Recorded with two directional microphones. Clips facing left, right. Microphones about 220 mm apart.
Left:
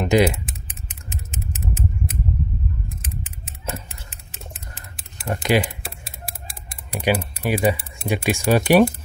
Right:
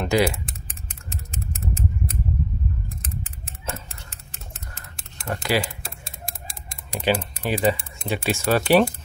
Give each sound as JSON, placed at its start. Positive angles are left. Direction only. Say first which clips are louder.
{"t": 0.0, "sound": "speech", "louder": "left 3 dB", "side_deg": 20}
{"t": 1.1, "sound": "typing", "louder": "left 1 dB", "side_deg": 5}
{"t": 2.9, "sound": "a sound", "louder": "left 1 dB", "side_deg": 0}
{"t": 5.3, "sound": "speech", "louder": "left 4 dB", "side_deg": 20}
{"t": 6.9, "sound": "speech", "louder": "left 1 dB", "side_deg": 5}